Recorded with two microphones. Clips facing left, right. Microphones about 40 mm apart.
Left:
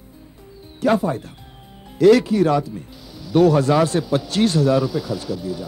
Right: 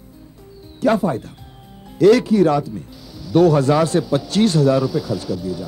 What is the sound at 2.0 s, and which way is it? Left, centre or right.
Speech, centre.